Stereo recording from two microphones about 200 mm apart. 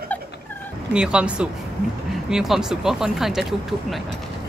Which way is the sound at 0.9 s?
5° right (ahead or behind).